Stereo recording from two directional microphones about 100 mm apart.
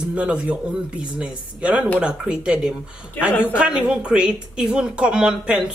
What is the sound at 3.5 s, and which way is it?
Speech, 10° right (ahead or behind).